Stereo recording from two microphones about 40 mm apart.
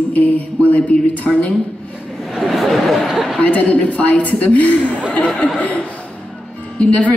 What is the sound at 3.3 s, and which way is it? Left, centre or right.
A woman's voice, left.